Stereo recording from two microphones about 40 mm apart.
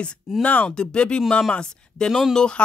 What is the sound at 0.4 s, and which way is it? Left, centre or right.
Speech, left.